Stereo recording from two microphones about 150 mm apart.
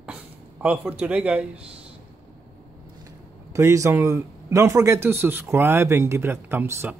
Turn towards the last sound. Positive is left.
turn(degrees=-15)  # may be behind; listen again after turning